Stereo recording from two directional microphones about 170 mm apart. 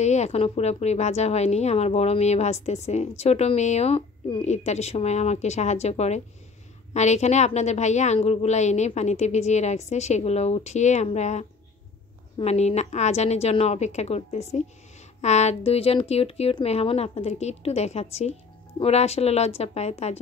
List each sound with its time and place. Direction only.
0.0 s a woman's voice: 40° left (ahead or behind)